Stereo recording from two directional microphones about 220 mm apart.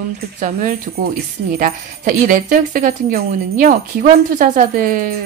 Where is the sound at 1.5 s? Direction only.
40° right (ahead or behind).